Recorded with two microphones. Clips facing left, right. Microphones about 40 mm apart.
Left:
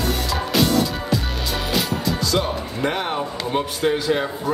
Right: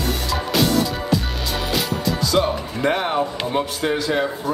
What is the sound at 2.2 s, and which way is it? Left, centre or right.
Speech, centre.